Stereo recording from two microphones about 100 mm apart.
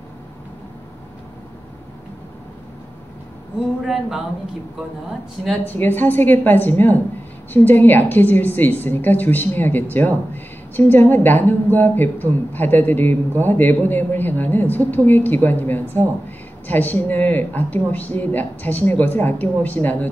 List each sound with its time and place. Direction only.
3.8 s speech: 5° right (ahead or behind)
5.7 s a woman's voice: 20° left (ahead or behind)